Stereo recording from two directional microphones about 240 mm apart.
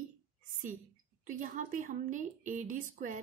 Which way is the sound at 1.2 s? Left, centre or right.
Right.